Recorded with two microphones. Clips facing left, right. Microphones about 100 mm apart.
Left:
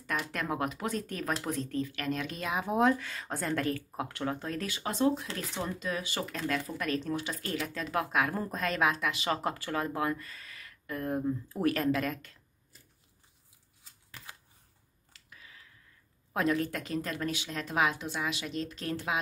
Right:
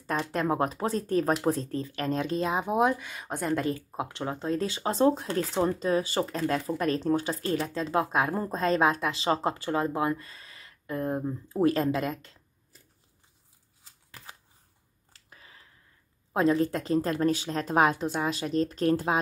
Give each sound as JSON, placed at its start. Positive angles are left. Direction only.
{"t": 0.0, "sound": "speech", "side_deg": -30}
{"t": 2.6, "sound": "speech", "side_deg": -15}
{"t": 15.1, "sound": "a sound", "side_deg": -35}
{"t": 16.3, "sound": "speech", "side_deg": -25}